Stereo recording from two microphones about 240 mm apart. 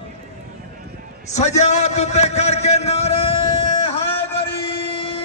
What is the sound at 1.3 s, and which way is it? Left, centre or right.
A man's voice, left.